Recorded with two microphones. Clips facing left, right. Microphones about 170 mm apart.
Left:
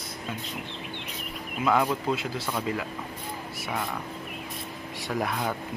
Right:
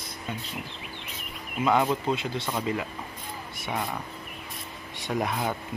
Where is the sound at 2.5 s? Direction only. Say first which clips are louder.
Right 1 dB; 10° right (ahead or behind).